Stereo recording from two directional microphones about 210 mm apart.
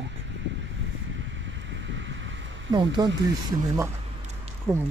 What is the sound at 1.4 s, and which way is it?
Wind, 60° right (ahead or behind).